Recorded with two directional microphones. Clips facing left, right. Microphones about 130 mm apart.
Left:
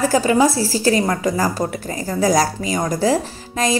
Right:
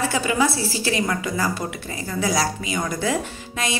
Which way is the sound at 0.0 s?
40° left (ahead or behind).